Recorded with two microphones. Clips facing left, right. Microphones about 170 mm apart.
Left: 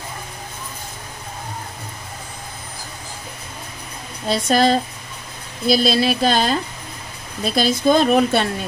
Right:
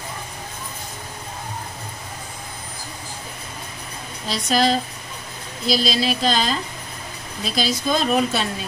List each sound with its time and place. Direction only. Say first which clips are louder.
4.3 s speech: left 4 dB; 55° left (ahead or behind)